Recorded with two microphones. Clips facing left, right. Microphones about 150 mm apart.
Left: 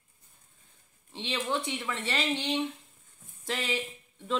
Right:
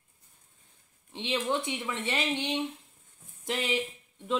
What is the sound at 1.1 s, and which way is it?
Speech, 15° right (ahead or behind).